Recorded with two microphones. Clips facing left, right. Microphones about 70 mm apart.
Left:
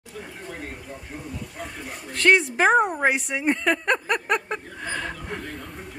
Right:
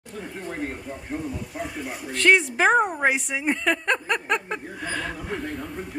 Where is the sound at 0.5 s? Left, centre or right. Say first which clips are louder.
Right 7 dB; right.